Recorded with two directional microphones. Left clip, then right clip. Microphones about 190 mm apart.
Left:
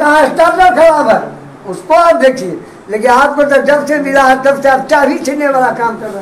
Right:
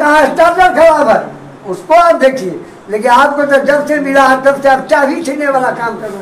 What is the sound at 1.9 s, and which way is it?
A man's voice, 25° left (ahead or behind).